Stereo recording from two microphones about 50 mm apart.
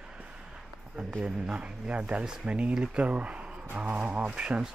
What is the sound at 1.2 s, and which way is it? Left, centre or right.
Speech, right.